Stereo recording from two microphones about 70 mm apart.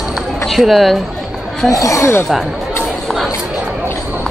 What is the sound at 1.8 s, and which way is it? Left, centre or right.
Speech, left.